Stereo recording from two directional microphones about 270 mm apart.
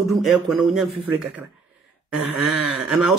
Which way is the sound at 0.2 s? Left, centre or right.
Centre.